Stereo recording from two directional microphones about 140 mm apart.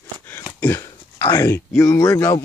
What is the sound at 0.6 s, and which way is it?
Speech, 15° left (ahead or behind).